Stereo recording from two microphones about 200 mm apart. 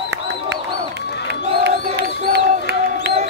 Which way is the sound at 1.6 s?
55° right (ahead or behind).